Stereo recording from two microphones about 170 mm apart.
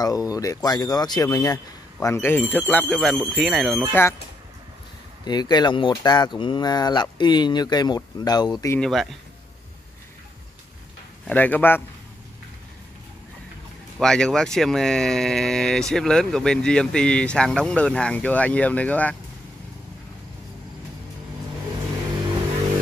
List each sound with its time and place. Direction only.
0.0 s speech: 20° left (ahead or behind); by 3.8 s centre (ahead or behind)
5.2 s speech: 25° left (ahead or behind)
8.7 s speech: centre (ahead or behind)
11.2 s speech: 10° left (ahead or behind)
13.9 s speech: 5° left (ahead or behind)